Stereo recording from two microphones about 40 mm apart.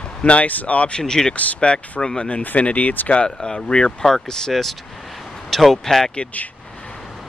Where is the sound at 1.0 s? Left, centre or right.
Centre.